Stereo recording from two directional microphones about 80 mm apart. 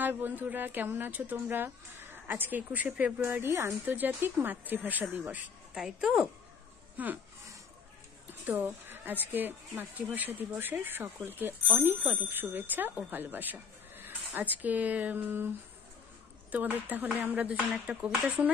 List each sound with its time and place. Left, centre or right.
0.0 s a woman's voice: right
5.8 s speech: centre
7.0 s a woman's voice: centre
8.5 s a woman's voice: right
16.5 s a woman's voice: right